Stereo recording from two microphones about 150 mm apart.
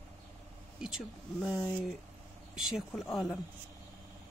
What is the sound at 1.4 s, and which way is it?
Speech, 10° right (ahead or behind).